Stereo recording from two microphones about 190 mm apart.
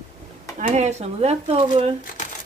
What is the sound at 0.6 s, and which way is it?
Speech, 35° right (ahead or behind).